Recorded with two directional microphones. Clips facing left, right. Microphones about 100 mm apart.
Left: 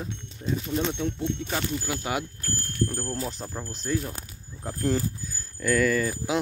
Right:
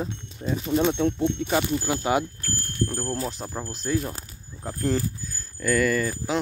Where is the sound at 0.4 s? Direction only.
80° right.